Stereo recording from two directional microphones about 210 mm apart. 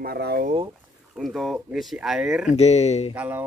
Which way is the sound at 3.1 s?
10° right (ahead or behind).